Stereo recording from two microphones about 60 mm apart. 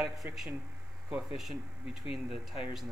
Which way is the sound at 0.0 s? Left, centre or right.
Centre.